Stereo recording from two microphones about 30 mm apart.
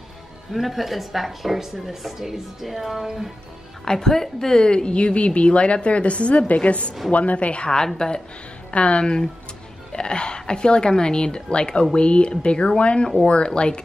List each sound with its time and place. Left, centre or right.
0.5 s a woman's voice: centre
3.8 s a woman's voice: centre
4.6 s a woman's voice: left
8.0 s a woman's voice: left
8.7 s a woman's voice: left
9.0 s a woman's voice: left